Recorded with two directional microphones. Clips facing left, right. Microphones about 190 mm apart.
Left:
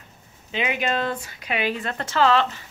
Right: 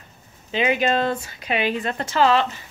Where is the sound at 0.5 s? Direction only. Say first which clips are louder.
Right 5 dB; 35° right (ahead or behind); by 2.6 s 15° right (ahead or behind).